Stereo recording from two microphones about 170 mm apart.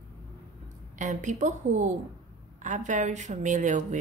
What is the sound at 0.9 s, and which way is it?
Speech, 45° right (ahead or behind).